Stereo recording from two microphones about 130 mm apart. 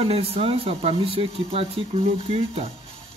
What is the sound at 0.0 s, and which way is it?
Speech, 50° right (ahead or behind).